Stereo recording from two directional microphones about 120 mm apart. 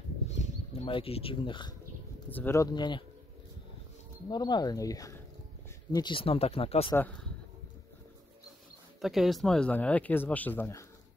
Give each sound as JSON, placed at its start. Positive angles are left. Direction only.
{"t": 0.8, "sound": "speech", "side_deg": 50}
{"t": 2.3, "sound": "speech", "side_deg": 20}
{"t": 2.7, "sound": "speech", "side_deg": 40}
{"t": 4.3, "sound": "speech", "side_deg": 35}
{"t": 6.1, "sound": "speech", "side_deg": 50}
{"t": 9.0, "sound": "speech", "side_deg": 0}